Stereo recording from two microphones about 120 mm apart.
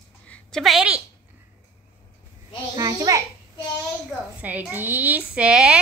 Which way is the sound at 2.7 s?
30° right (ahead or behind).